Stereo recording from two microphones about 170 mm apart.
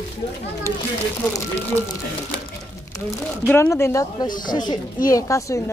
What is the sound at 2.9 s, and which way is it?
Crumpling, 20° left (ahead or behind).